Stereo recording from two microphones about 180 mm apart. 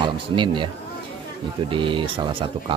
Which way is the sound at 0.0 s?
25° right (ahead or behind).